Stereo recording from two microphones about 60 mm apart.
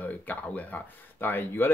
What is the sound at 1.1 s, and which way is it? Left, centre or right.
Speech, left.